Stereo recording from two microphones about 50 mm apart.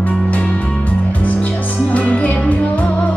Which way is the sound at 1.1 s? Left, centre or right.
Left.